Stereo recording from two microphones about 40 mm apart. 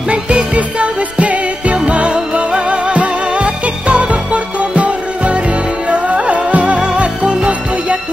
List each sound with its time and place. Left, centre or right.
0.1 s music: right